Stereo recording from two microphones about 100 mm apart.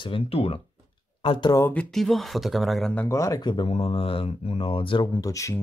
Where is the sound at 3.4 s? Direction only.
50° left (ahead or behind).